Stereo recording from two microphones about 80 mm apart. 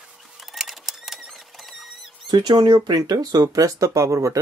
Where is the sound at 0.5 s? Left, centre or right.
Centre.